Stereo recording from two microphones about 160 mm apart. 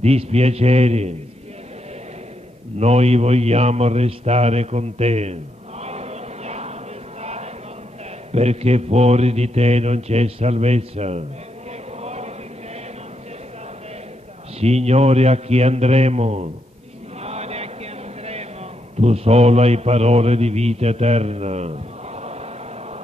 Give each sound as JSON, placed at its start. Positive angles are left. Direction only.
{"t": 0.0, "sound": "a man's voice", "side_deg": -40}
{"t": 2.8, "sound": "a sound", "side_deg": -40}
{"t": 8.3, "sound": "a man's voice", "side_deg": -40}
{"t": 12.0, "sound": "chant", "side_deg": -40}
{"t": 14.6, "sound": "a man's voice", "side_deg": -40}
{"t": 17.2, "sound": "chant", "side_deg": -40}
{"t": 18.9, "sound": "a man's voice", "side_deg": -40}